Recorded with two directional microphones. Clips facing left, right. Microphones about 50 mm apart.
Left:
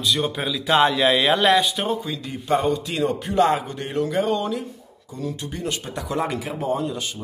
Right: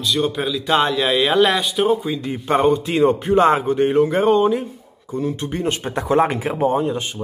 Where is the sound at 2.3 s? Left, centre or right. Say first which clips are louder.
Right 4 dB; right.